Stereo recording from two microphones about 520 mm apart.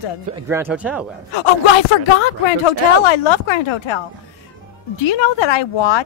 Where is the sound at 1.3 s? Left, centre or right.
Left.